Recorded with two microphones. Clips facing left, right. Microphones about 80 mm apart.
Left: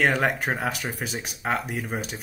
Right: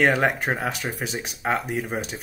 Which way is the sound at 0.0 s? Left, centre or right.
Centre.